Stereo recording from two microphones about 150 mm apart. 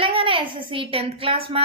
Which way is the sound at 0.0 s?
35° right (ahead or behind).